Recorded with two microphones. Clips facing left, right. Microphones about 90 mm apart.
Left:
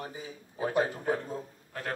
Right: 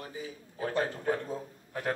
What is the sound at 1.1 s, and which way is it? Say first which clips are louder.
Speech: even; centre (ahead or behind).